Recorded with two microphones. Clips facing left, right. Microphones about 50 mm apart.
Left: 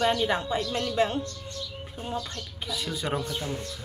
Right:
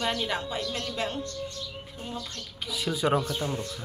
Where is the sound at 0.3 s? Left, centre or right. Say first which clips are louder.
Left 4 dB; left.